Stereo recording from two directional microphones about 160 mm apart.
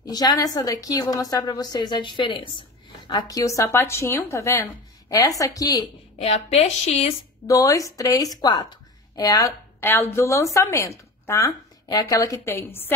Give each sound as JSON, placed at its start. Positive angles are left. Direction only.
{"t": 0.0, "sound": "a woman's voice", "side_deg": 25}
{"t": 6.1, "sound": "a woman's voice", "side_deg": 40}
{"t": 7.4, "sound": "a woman's voice", "side_deg": 20}